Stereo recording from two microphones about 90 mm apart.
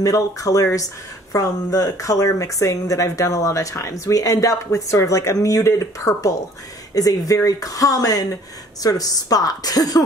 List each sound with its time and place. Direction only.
0.0 s a woman's voice: 40° left (ahead or behind)